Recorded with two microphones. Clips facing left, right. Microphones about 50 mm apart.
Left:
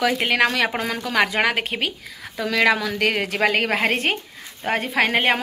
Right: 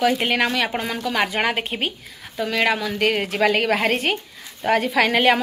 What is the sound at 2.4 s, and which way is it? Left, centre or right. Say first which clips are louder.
Speech: left 2 dB; left.